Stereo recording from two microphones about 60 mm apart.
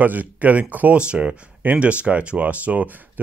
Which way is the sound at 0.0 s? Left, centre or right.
Right.